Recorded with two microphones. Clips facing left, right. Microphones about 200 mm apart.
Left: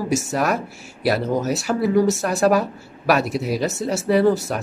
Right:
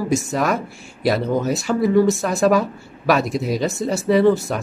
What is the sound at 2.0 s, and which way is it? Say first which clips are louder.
Speech: right 1 dB; 40° left (ahead or behind).